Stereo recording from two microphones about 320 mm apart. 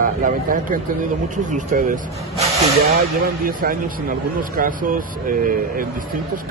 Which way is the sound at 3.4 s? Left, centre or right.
Right.